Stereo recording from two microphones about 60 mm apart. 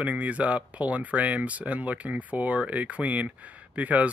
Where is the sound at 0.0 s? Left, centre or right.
Right.